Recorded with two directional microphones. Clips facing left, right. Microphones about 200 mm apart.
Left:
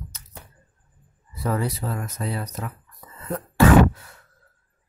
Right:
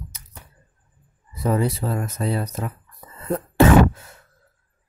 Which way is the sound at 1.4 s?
25° right (ahead or behind).